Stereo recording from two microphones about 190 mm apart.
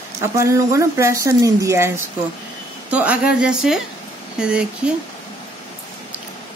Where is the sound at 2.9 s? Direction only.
5° right (ahead or behind).